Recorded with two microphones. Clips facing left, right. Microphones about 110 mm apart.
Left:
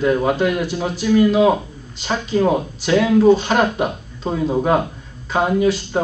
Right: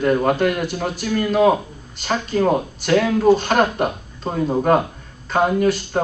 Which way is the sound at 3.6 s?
10° left (ahead or behind).